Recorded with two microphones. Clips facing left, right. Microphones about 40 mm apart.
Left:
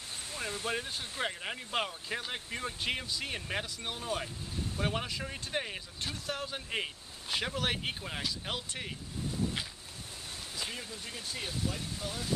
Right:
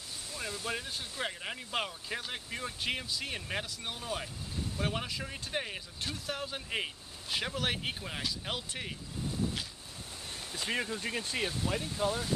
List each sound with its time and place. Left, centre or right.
0.7 s speech: centre
10.7 s speech: right
11.4 s speech: right